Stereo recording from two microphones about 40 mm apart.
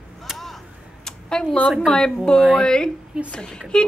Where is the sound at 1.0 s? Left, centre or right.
Centre.